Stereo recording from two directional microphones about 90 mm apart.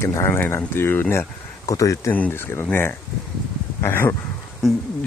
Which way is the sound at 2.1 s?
20° left (ahead or behind).